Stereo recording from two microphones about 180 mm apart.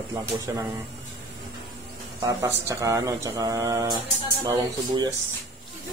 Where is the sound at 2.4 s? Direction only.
15° right (ahead or behind).